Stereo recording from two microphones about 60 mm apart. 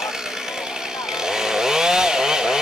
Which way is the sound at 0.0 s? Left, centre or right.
Centre.